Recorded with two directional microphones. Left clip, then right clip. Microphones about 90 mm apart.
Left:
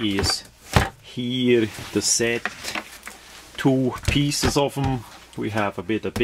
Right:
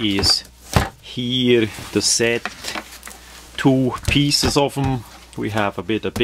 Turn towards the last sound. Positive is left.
turn(degrees=-30)  # may be behind; listen again after turning